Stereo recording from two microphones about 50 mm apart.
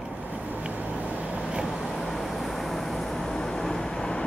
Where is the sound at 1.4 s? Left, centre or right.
Centre.